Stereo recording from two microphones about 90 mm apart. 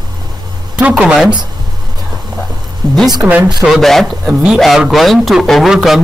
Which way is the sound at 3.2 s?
15° right (ahead or behind).